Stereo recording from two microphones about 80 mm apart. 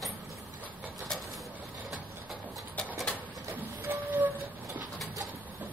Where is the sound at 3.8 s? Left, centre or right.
Right.